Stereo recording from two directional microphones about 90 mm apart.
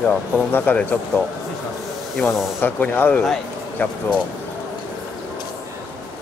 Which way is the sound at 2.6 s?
20° left (ahead or behind).